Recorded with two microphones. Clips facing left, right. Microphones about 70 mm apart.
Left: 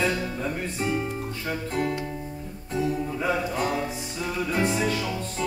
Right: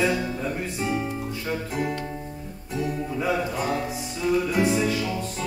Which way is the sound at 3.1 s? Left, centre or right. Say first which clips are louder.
Right 1 dB; centre.